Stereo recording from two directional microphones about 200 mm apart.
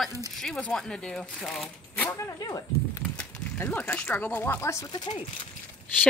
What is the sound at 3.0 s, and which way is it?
Speech, 5° left (ahead or behind).